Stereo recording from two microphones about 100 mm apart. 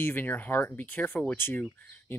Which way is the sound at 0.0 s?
20° left (ahead or behind).